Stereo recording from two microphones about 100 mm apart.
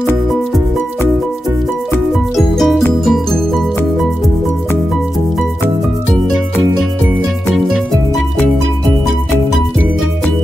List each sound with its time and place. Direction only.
2.3 s music: centre (ahead or behind)